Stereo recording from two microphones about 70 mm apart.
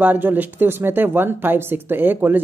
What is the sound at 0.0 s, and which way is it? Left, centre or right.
Speech, right.